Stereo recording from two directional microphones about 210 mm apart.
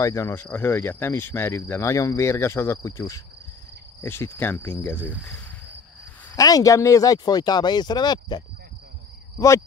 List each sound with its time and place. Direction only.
0.0 s cricket: 15° left (ahead or behind)
6.3 s speech: 15° left (ahead or behind)